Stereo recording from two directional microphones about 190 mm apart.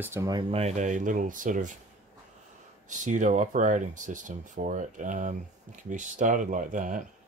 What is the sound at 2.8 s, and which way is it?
Speech, 40° right (ahead or behind).